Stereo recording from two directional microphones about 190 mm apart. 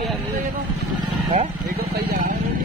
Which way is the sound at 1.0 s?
30° right (ahead or behind).